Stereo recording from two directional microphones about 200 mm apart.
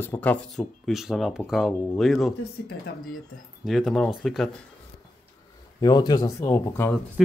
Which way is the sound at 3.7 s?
Centre (ahead or behind).